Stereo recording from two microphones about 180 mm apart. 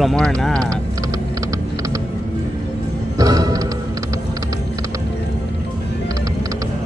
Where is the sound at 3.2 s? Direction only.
20° right (ahead or behind).